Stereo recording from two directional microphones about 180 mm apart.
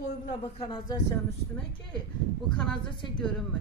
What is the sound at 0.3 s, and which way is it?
Speech, 30° left (ahead or behind).